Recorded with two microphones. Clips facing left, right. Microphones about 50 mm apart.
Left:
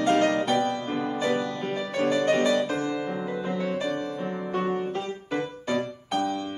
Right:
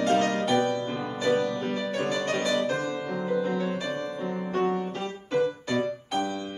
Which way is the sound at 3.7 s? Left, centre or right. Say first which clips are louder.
Left 2 dB; centre.